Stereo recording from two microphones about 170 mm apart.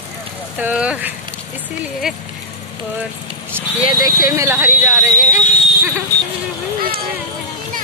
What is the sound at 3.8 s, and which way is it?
Speech, 25° right (ahead or behind).